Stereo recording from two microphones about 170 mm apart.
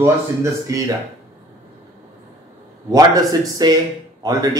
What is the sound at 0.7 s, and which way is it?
Speech, 20° right (ahead or behind).